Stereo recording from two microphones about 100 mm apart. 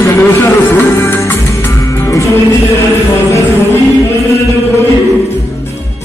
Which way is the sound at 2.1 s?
30° left (ahead or behind).